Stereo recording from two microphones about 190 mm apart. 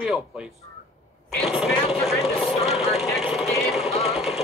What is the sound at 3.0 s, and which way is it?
Vehicle, centre (ahead or behind).